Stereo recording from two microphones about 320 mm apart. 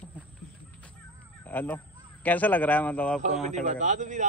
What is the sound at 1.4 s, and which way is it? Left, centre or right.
A man's voice, centre.